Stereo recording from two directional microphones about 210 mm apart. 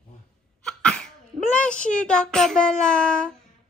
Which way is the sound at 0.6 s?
5° left (ahead or behind).